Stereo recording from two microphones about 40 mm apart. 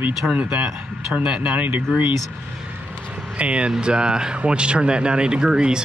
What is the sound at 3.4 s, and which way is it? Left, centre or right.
Speech, right.